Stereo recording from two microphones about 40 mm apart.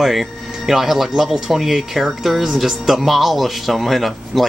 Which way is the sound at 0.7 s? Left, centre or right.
Centre.